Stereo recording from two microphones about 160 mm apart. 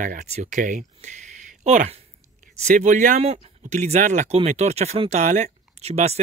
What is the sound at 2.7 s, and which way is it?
Speech, 50° right (ahead or behind).